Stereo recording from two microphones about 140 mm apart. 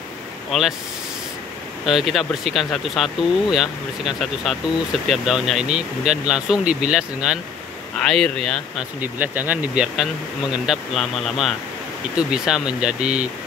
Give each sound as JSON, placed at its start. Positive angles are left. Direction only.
{"t": 0.5, "sound": "speech", "side_deg": 0}
{"t": 1.9, "sound": "speech", "side_deg": 0}
{"t": 9.0, "sound": "speech", "side_deg": -10}